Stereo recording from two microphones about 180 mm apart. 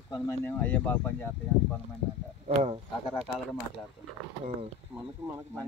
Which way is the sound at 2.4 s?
35° right (ahead or behind).